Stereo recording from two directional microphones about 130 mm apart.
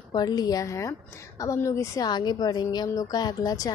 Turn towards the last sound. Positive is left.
turn(degrees=30)  # may be behind; listen again after turning